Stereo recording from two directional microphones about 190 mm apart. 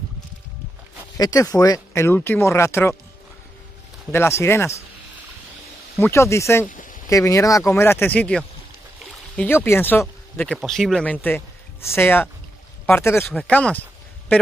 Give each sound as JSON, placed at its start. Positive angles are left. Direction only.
{"t": 1.1, "sound": "speech", "side_deg": 20}
{"t": 4.1, "sound": "speech", "side_deg": 15}
{"t": 5.9, "sound": "speech", "side_deg": 15}
{"t": 6.7, "sound": "a sound", "side_deg": 45}
{"t": 7.1, "sound": "speech", "side_deg": 15}